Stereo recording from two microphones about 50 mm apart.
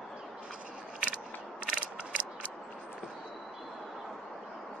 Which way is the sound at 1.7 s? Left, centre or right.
Right.